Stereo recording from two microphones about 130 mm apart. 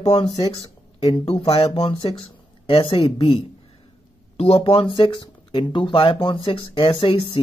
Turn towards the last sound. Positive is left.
turn(degrees=45)  # may be behind; listen again after turning